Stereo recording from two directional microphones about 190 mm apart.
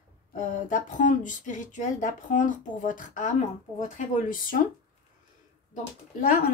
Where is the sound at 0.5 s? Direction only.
45° left (ahead or behind).